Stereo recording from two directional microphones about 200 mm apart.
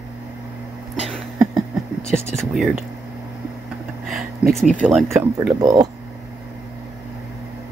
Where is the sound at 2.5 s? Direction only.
Centre (ahead or behind).